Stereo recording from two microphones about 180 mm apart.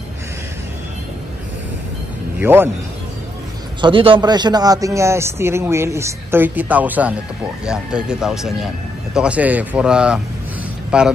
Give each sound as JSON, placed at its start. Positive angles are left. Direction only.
{"t": 2.3, "sound": "speech", "side_deg": -10}
{"t": 3.8, "sound": "a man's voice", "side_deg": -30}